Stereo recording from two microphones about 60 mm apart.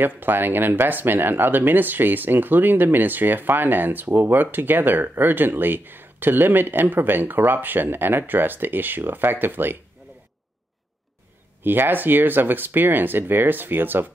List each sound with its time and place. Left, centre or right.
0.0 s speech: right
11.6 s speech: right